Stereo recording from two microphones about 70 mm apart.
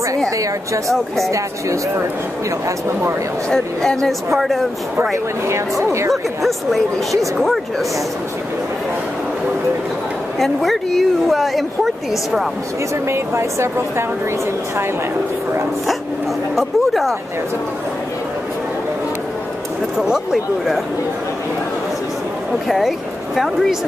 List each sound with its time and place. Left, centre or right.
3.4 s a woman's voice: centre
5.9 s speech: right
6.4 s a woman's voice: centre
10.4 s a woman's voice: centre
13.1 s speech: right
16.5 s a woman's voice: centre
20.0 s speech: centre
22.7 s speech: centre